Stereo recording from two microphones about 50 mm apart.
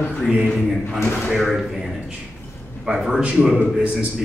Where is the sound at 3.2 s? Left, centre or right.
Right.